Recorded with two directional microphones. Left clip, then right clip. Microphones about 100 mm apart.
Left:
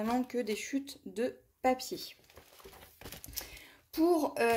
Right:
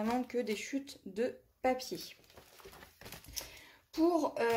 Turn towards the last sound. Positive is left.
turn(degrees=45)  # may be behind; listen again after turning